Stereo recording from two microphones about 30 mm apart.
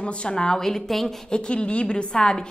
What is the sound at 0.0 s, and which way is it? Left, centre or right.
Speech, left.